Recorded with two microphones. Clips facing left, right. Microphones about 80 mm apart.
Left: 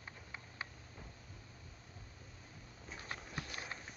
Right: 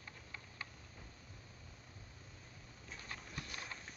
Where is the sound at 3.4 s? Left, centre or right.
Left.